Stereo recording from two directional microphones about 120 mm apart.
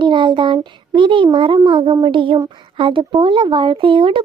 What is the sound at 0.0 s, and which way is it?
A child's voice, 40° right (ahead or behind).